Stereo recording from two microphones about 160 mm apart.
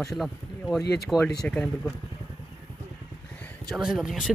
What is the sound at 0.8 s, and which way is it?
Speech, 90° left.